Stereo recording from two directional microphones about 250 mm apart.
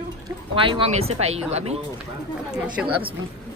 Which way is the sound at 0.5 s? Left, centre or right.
Centre.